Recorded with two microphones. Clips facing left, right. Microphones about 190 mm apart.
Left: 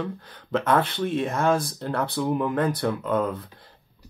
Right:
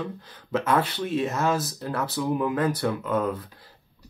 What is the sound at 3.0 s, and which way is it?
Speech, 30° left (ahead or behind).